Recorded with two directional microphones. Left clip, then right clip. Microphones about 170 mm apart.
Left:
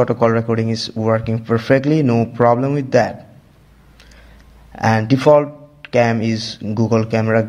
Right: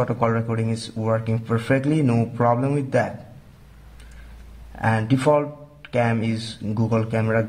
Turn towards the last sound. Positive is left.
turn(degrees=30)  # may be behind; listen again after turning